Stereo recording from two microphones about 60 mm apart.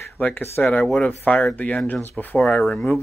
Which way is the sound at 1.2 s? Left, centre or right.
Left.